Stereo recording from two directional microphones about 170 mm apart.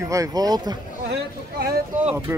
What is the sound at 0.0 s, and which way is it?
Speech, 20° right (ahead or behind).